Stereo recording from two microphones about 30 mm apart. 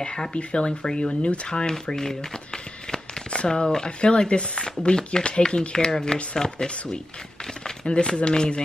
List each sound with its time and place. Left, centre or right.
0.0 s speech: left
7.8 s speech: left